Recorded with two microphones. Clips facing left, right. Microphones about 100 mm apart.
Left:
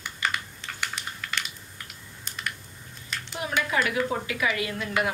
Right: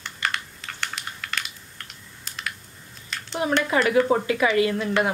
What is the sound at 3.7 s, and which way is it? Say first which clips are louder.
A woman's voice: right 8 dB; 35° right (ahead or behind).